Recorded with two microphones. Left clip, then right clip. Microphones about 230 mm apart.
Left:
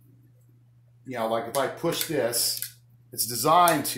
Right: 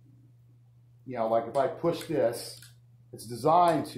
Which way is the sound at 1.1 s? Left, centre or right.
Centre.